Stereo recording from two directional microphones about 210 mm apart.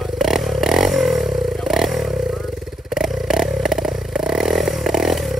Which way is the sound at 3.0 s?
Centre (ahead or behind).